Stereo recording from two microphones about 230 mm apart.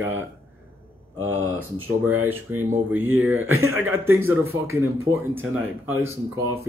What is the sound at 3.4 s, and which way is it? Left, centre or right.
Speech, right.